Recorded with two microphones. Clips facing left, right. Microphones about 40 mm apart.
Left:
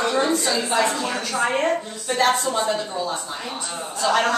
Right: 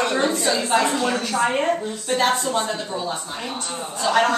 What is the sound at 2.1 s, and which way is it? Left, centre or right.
Speech, centre.